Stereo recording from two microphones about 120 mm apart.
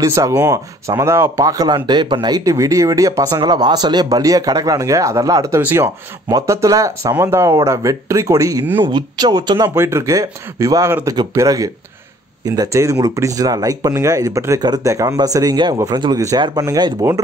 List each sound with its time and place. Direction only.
0.0 s speech: 30° right (ahead or behind)
5.6 s speech: 15° right (ahead or behind)
8.9 s speech: 35° right (ahead or behind)
9.8 s speech: 20° right (ahead or behind)